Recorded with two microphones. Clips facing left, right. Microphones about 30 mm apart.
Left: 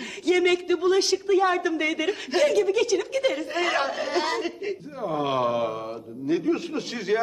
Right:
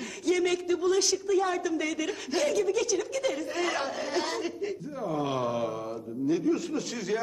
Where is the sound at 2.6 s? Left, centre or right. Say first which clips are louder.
Left 5 dB; left.